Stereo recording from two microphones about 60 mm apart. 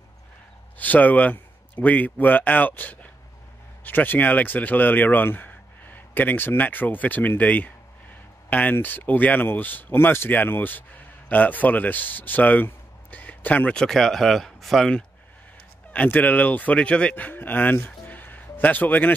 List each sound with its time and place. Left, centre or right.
0.7 s speech: left
13.7 s speech: centre
15.9 s speech: left
17.1 s speech: left